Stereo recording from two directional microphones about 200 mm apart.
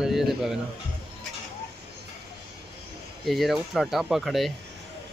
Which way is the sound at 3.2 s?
Centre (ahead or behind).